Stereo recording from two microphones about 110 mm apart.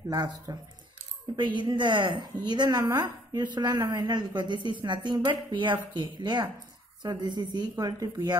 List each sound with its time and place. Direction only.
0.1 s a woman's voice: 35° right (ahead or behind)